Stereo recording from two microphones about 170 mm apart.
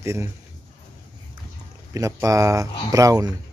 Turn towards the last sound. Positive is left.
turn(degrees=-20)  # may be behind; listen again after turning